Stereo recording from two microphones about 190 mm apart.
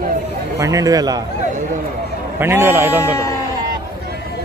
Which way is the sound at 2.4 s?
10° right (ahead or behind).